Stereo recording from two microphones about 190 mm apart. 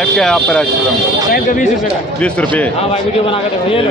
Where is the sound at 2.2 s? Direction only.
5° left (ahead or behind).